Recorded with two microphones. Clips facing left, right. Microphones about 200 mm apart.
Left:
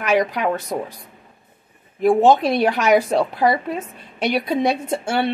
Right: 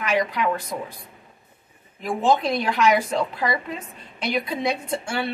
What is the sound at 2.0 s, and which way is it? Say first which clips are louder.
A woman's voice: left 7 dB; 45° left (ahead or behind).